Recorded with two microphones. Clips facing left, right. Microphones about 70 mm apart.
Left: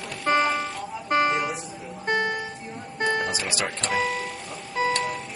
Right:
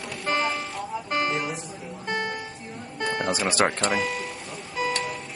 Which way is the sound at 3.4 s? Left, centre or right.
Right.